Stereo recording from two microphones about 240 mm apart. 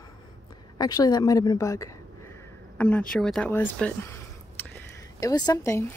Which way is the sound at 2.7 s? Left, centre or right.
Centre.